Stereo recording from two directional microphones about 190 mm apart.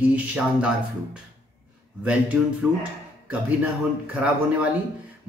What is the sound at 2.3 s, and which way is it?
Speech, 5° right (ahead or behind).